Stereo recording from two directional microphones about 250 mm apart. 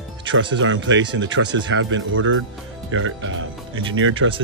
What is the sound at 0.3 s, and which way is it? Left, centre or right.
Speech, right.